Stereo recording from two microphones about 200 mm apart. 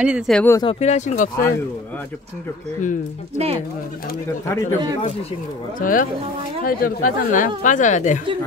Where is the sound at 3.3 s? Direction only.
30° right (ahead or behind).